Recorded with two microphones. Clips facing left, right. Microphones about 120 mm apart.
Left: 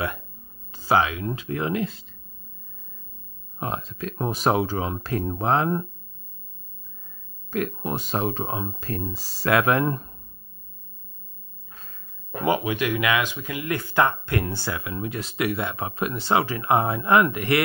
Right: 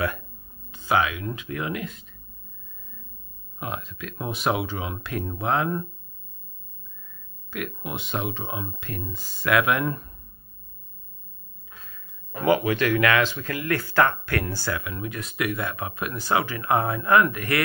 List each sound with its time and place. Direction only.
0.7 s speech: 35° left (ahead or behind)
3.5 s speech: 35° left (ahead or behind)
7.5 s speech: 35° left (ahead or behind)
11.7 s a sound: 30° left (ahead or behind)
12.4 s speech: 15° left (ahead or behind)